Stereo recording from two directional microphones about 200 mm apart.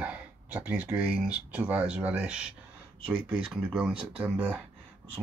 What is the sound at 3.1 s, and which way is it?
Speech, 25° right (ahead or behind).